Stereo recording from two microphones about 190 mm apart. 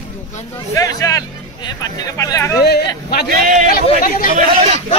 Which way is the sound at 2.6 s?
55° left (ahead or behind).